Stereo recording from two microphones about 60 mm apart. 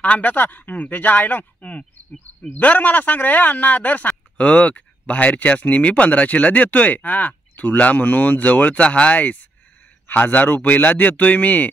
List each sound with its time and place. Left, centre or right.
0.0 s speech: left